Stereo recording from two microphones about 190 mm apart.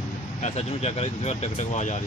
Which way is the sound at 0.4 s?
35° left (ahead or behind).